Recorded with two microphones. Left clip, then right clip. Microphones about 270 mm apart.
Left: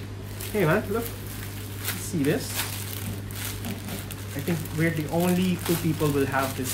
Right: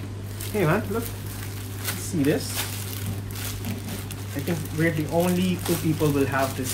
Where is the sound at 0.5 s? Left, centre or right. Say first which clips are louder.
Even; centre.